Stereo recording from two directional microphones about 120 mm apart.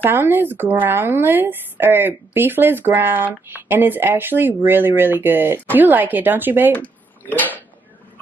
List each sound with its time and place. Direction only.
0.0 s speech: 20° right (ahead or behind)
6.7 s speech: 15° left (ahead or behind)